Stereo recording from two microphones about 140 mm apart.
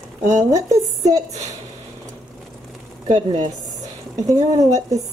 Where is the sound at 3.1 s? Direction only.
30° right (ahead or behind).